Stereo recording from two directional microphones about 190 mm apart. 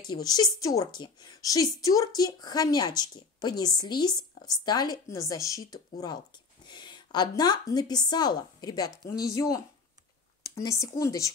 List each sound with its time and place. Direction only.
0.0 s a woman's voice: 20° left (ahead or behind)